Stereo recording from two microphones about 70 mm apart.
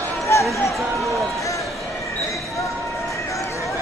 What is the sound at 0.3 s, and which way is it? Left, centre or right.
Music, left.